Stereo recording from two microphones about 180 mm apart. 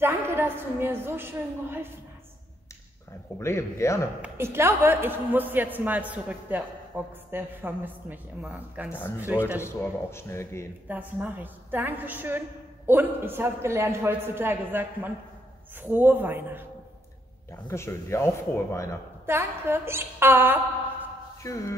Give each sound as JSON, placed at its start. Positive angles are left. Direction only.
{"t": 0.0, "sound": "a woman's voice", "side_deg": -10}
{"t": 3.3, "sound": "speech", "side_deg": 15}
{"t": 4.2, "sound": "a woman's voice", "side_deg": -15}
{"t": 9.6, "sound": "speech", "side_deg": 15}
{"t": 10.9, "sound": "a woman's voice", "side_deg": -10}
{"t": 17.6, "sound": "speech", "side_deg": 15}
{"t": 19.2, "sound": "a woman's voice", "side_deg": -15}
{"t": 21.4, "sound": "speech", "side_deg": 15}